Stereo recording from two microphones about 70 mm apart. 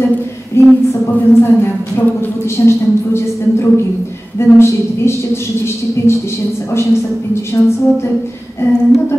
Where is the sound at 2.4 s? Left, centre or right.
Left.